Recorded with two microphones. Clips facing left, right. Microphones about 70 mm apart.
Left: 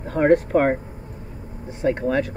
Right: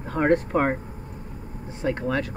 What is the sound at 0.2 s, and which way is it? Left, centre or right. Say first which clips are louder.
Speech: left 4 dB; centre.